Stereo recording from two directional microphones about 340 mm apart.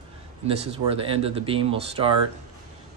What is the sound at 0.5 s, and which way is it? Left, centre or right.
Speech, centre.